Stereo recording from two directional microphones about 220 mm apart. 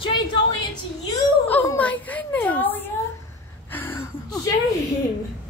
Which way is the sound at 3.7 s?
10° left (ahead or behind).